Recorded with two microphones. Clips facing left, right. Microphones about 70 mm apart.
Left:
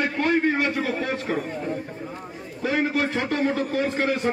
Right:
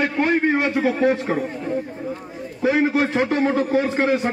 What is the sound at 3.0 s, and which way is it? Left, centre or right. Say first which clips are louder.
Speech: right 5 dB; centre.